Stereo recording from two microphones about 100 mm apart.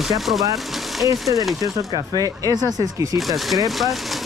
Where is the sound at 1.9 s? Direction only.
40° right (ahead or behind).